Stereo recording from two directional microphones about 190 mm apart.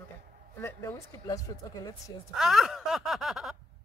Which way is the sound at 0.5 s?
15° left (ahead or behind).